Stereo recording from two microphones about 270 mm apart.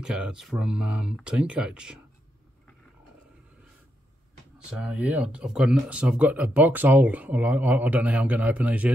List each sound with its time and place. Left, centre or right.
0.0 s speech: centre
4.6 s speech: centre